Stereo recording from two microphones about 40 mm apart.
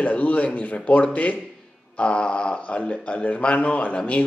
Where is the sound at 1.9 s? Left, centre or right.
Left.